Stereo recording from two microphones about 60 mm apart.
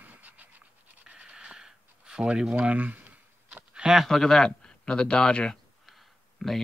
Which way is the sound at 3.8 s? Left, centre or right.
Centre.